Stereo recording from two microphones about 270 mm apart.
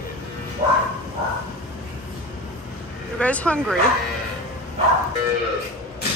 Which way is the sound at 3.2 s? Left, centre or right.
Centre.